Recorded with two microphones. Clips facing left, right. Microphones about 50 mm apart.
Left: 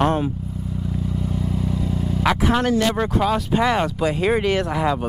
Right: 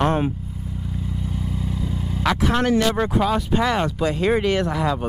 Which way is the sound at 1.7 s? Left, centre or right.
Left.